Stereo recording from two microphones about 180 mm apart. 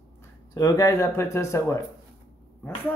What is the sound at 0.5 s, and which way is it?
Speech, 20° left (ahead or behind).